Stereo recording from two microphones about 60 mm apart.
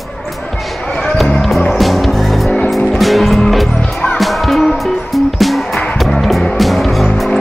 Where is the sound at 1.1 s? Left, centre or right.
Centre.